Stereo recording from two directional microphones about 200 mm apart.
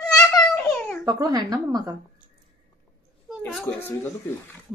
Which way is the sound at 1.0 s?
20° right (ahead or behind).